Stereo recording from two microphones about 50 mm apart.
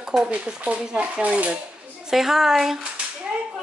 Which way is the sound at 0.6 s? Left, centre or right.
Right.